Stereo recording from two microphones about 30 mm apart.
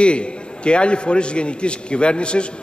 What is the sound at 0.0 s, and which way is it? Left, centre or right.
A man's voice, left.